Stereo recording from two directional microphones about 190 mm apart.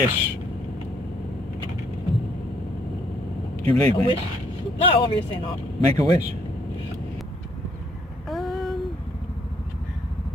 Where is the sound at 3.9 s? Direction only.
20° left (ahead or behind).